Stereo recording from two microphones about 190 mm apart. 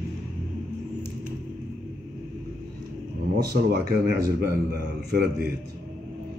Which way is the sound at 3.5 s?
55° right (ahead or behind).